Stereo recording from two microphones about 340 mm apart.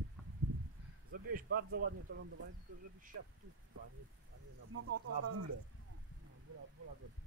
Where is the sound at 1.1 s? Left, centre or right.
Right.